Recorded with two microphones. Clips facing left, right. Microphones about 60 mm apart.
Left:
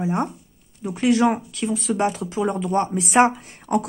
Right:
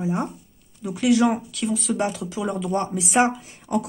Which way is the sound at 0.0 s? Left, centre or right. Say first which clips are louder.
Left 2 dB; left.